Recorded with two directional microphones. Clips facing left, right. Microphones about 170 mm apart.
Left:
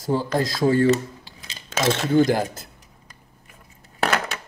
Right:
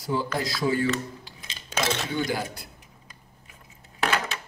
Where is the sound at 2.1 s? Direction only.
45° left (ahead or behind).